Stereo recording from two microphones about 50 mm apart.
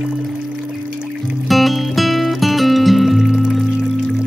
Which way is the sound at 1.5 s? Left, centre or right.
Centre.